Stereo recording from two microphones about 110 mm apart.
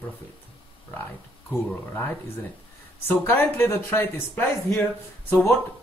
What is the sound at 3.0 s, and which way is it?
Speech, 20° left (ahead or behind).